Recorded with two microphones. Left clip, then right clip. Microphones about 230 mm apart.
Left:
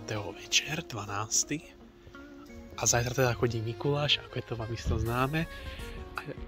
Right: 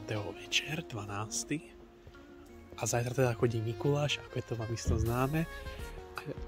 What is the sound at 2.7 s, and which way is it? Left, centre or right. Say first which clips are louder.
Speech: left 4 dB; centre.